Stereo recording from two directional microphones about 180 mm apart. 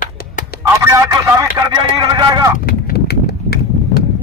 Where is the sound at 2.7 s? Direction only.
60° left (ahead or behind).